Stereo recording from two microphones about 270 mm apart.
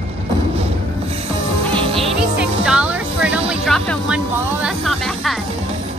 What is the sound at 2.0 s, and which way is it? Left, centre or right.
Music, centre.